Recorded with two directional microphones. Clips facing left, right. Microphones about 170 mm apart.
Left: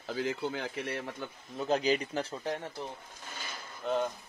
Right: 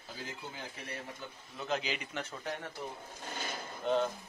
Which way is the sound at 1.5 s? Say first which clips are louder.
Left 8 dB; 40° left (ahead or behind).